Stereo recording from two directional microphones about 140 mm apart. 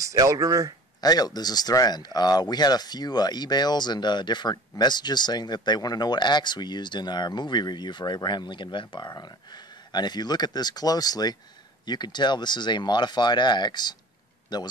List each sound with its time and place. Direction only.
0.0 s speech: 25° right (ahead or behind)
1.0 s speech: 30° left (ahead or behind)